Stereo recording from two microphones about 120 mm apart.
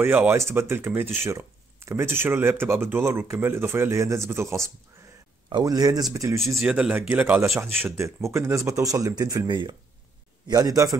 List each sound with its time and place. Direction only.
0.0 s speech: 15° right (ahead or behind)
6.4 s speech: centre (ahead or behind); by 11.0 s 30° right (ahead or behind)